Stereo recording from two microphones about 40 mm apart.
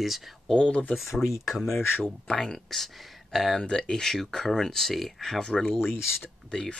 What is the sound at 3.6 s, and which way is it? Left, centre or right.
Speech, left.